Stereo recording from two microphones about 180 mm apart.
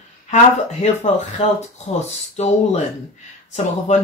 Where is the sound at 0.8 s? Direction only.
40° left (ahead or behind).